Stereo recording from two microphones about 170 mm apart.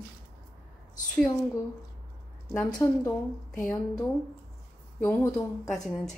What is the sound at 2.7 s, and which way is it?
Speech, 5° left (ahead or behind).